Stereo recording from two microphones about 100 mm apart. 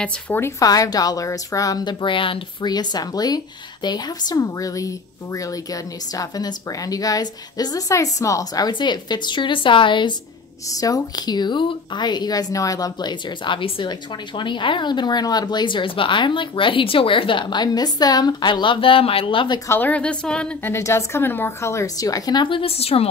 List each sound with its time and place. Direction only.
0.4 s speech: 35° left (ahead or behind); by 2.7 s 60° left (ahead or behind)
2.7 s speech: 45° left (ahead or behind)
10.8 s speech: 35° left (ahead or behind)
13.4 s a woman's voice: 55° left (ahead or behind)
19.7 s a woman's voice: 15° left (ahead or behind)
20.6 s speech: 25° left (ahead or behind); by 23.0 s 80° left